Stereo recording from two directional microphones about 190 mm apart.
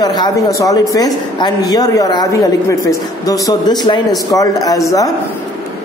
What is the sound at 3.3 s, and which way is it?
A man's voice, 20° left (ahead or behind).